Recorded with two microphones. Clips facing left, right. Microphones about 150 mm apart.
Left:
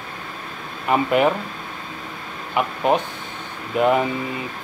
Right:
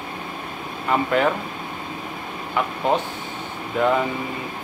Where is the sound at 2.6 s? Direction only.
20° left (ahead or behind).